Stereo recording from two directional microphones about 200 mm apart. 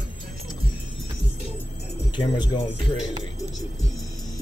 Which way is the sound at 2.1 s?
20° left (ahead or behind).